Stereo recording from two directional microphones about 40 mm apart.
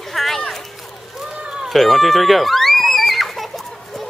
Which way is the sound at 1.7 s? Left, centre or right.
Centre.